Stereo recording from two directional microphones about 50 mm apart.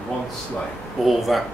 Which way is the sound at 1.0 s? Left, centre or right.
Centre.